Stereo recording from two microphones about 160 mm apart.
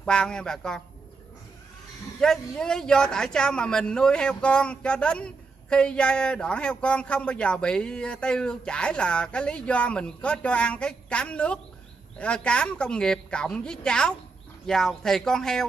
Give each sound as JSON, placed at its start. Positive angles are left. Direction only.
{"t": 0.0, "sound": "a man's voice", "side_deg": 5}
{"t": 2.1, "sound": "a man's voice", "side_deg": 5}